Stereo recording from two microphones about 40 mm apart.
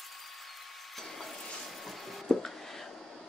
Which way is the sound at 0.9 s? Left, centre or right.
Centre.